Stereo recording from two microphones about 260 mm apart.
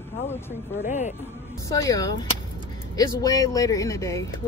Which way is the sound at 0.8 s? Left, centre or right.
Left.